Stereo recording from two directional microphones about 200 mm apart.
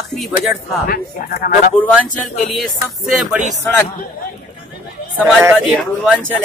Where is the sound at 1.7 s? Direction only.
5° left (ahead or behind).